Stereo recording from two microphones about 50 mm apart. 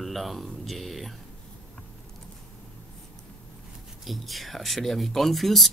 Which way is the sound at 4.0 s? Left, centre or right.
Centre.